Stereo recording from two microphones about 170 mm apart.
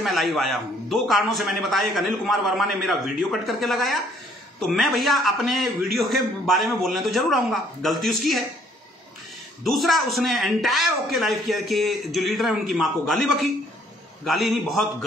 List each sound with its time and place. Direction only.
0.0 s a man's voice: centre (ahead or behind)
9.7 s a man's voice: centre (ahead or behind)